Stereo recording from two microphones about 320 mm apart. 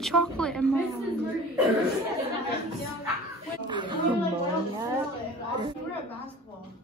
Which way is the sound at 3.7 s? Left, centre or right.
Centre.